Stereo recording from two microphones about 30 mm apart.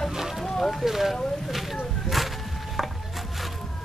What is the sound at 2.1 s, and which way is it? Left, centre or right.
Wood, centre.